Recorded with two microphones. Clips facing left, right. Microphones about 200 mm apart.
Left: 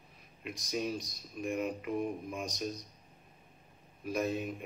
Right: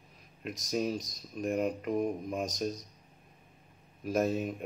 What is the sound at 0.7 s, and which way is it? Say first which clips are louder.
Mantra: right 4 dB; 40° right (ahead or behind).